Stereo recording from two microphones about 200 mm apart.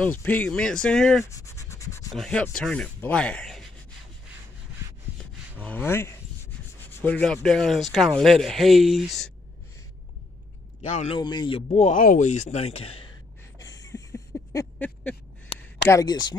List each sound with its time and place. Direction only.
0.0 s speech: 10° left (ahead or behind)
1.2 s scratch: 15° left (ahead or behind)
2.1 s speech: 5° left (ahead or behind)
5.9 s speech: 10° left (ahead or behind)
10.9 s speech: 35° left (ahead or behind)
11.1 s speech: 20° left (ahead or behind)
13.6 s a sound: 20° left (ahead or behind)
15.9 s speech: 20° left (ahead or behind)